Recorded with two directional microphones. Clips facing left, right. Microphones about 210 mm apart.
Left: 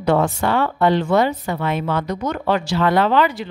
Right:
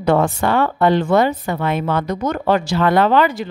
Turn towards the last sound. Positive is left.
turn(degrees=-45)  # may be behind; listen again after turning